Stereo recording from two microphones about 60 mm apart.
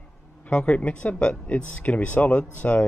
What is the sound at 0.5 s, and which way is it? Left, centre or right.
Speech, centre.